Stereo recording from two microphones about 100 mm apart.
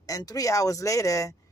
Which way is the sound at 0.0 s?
40° left (ahead or behind).